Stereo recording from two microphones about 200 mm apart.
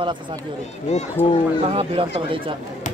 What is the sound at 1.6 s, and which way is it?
Speech, 30° right (ahead or behind).